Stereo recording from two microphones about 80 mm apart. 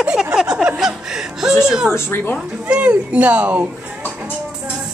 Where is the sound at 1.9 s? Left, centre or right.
Left.